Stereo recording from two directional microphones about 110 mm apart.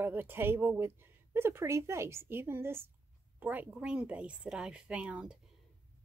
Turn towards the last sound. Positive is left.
turn(degrees=-10)  # may be behind; listen again after turning